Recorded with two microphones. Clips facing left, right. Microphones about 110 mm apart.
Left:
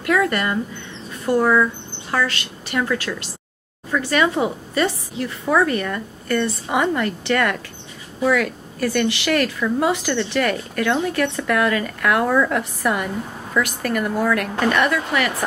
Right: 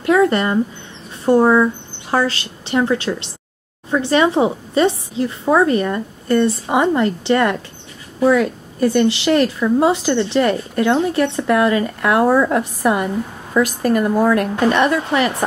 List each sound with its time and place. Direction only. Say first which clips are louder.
0.0 s speech: right 5 dB; 25° right (ahead or behind)